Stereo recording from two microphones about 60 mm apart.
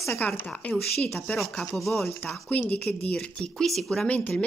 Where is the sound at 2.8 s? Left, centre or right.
Centre.